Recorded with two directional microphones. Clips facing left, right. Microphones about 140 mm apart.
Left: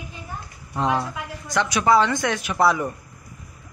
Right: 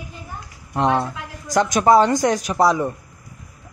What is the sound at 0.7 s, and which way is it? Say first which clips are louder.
Speech: right 4 dB; 65° right (ahead or behind).